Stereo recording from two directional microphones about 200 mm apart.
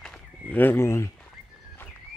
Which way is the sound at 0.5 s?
10° left (ahead or behind).